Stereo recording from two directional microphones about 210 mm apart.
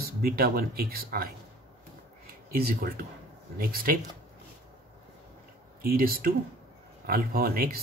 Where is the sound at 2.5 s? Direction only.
45° right (ahead or behind).